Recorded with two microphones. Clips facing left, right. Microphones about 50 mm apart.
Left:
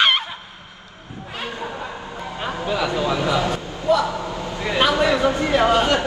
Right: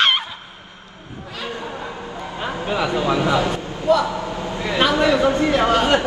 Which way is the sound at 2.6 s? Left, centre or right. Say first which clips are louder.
Right 1 dB; right.